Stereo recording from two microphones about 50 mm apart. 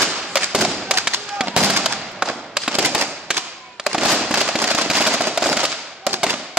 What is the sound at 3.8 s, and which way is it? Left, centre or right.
Fireworks, centre.